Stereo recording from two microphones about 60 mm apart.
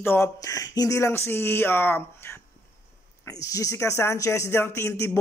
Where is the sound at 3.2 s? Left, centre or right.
Left.